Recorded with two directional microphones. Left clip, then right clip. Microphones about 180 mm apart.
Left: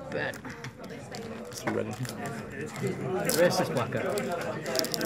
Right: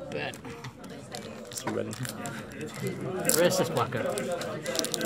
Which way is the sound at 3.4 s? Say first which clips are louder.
Even; 50° right (ahead or behind).